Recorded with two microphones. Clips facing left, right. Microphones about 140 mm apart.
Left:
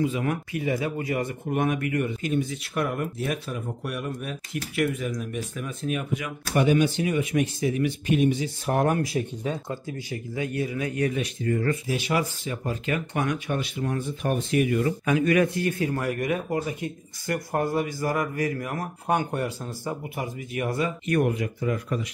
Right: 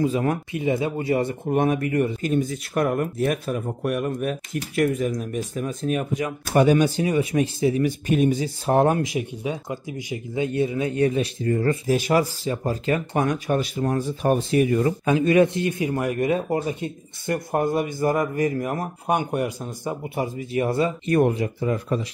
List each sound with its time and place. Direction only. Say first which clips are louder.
0.0 s speech: right 4 dB; 35° right (ahead or behind)
0.5 s speech: right 3 dB; 25° right (ahead or behind)
20.2 s speech: right 6 dB; 30° right (ahead or behind)